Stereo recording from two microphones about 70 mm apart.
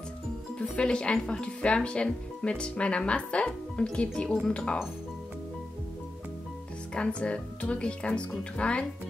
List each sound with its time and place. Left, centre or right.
0.6 s speech: centre
6.9 s speech: centre